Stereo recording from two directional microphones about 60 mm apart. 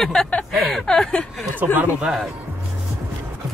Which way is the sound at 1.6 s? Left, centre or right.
Right.